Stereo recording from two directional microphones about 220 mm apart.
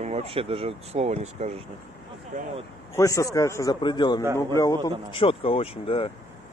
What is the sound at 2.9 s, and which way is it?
A man's voice, 15° left (ahead or behind).